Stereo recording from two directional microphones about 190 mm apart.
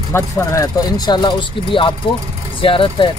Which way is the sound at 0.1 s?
15° left (ahead or behind).